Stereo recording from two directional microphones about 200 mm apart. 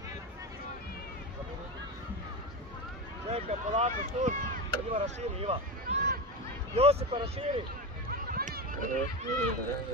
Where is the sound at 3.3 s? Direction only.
35° right (ahead or behind).